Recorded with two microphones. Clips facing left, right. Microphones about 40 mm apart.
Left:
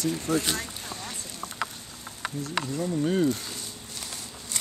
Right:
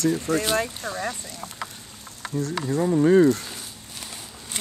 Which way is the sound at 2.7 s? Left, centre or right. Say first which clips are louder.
Right 10 dB; right.